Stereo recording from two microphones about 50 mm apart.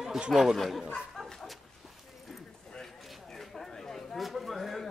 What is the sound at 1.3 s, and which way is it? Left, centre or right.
Dog, centre.